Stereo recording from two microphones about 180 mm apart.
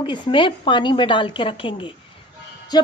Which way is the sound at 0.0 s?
25° left (ahead or behind).